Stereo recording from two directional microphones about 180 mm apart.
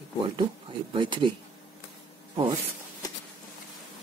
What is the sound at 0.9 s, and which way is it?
Speech, 25° right (ahead or behind).